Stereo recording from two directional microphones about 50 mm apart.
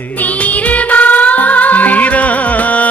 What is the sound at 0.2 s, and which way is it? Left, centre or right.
Music, left.